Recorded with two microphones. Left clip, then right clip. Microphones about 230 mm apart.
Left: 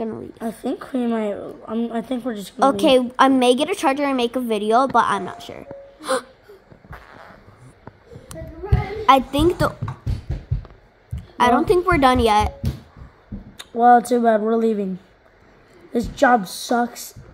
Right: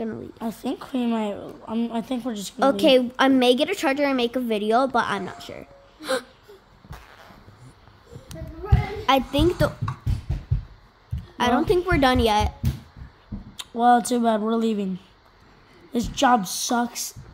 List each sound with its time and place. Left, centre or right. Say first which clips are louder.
0.4 s a woman's voice: left 4 dB; right
2.6 s a woman's voice: left 2 dB; centre
8.3 s a sound: left 2 dB; centre
11.3 s a woman's voice: left 5 dB; centre
13.7 s a woman's voice: left 5 dB; centre
15.9 s a woman's voice: left 3 dB; centre